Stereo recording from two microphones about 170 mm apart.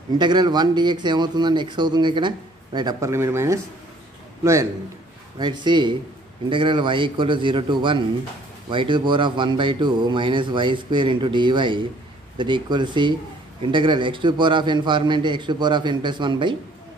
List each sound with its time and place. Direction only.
0.2 s a man's voice: 25° right (ahead or behind)